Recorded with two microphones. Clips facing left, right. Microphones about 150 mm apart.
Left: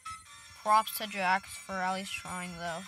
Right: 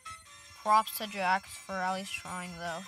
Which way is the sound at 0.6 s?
Centre (ahead or behind).